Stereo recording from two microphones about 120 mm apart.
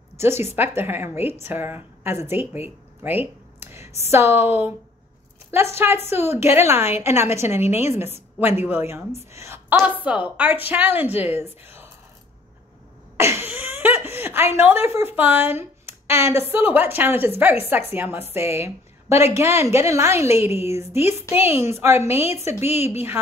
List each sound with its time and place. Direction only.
0.6 s a woman's voice: 20° right (ahead or behind)
5.5 s a woman's voice: 20° right (ahead or behind)
11.6 s a sound: 20° right (ahead or behind)
13.2 s a sound: 20° right (ahead or behind)
16.1 s a woman's voice: 20° right (ahead or behind)
20.5 s speech: 60° left (ahead or behind)
21.1 s a woman's voice: 20° right (ahead or behind)
22.5 s speech: 65° left (ahead or behind)
22.8 s a woman's voice: 20° right (ahead or behind)